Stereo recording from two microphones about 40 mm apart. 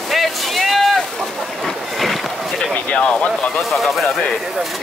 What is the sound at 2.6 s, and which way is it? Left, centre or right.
Speech, left.